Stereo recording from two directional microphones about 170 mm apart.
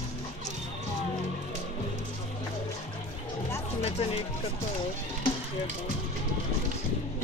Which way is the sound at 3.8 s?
40° left (ahead or behind).